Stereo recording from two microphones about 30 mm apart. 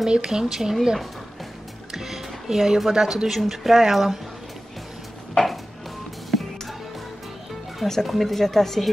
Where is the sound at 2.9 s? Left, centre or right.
Centre.